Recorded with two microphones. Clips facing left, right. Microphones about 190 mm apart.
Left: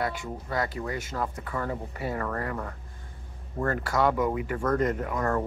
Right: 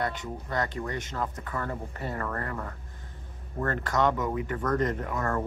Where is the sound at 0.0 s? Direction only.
10° left (ahead or behind).